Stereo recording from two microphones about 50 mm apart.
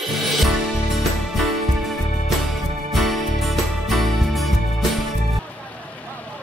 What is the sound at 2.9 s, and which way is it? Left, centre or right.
Music, centre.